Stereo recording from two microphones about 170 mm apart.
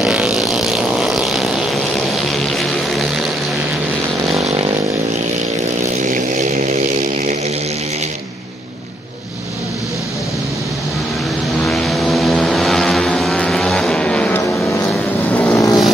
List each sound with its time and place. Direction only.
0.0 s vehicle: 5° right (ahead or behind)
6.0 s vehicle: 50° right (ahead or behind)
11.6 s vehicle: centre (ahead or behind)